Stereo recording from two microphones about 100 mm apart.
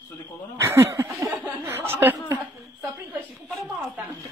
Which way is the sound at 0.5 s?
25° right (ahead or behind).